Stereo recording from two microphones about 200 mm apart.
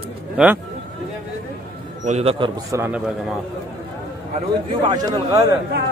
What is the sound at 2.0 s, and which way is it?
Speech, 30° right (ahead or behind).